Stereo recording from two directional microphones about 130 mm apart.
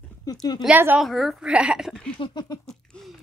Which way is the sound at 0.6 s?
15° right (ahead or behind).